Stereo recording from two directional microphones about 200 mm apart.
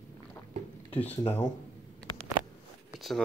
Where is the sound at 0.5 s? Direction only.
40° right (ahead or behind).